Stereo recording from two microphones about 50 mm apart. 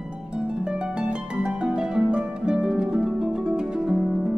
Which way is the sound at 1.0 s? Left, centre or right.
Centre.